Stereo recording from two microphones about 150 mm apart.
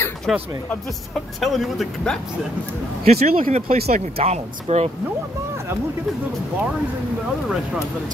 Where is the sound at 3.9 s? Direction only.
45° right (ahead or behind).